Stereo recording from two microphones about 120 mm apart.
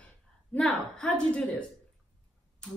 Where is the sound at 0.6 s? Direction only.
5° left (ahead or behind).